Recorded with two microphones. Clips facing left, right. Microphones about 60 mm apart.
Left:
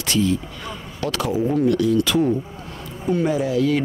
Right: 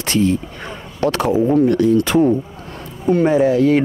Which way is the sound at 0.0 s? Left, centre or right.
Right.